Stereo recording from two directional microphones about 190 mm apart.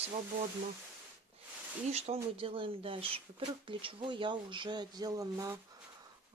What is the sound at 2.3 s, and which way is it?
Speech, 25° right (ahead or behind).